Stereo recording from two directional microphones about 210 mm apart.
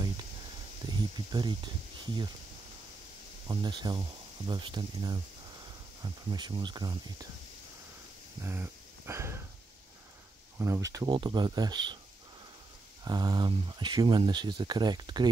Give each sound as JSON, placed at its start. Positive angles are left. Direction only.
{"t": 0.8, "sound": "speech", "side_deg": -20}
{"t": 3.4, "sound": "speech", "side_deg": -20}
{"t": 8.4, "sound": "speech", "side_deg": -10}
{"t": 10.6, "sound": "speech", "side_deg": -15}
{"t": 13.0, "sound": "speech", "side_deg": -20}